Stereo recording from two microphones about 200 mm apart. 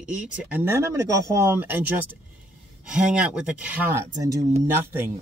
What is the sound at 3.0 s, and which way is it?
Speech, 5° right (ahead or behind).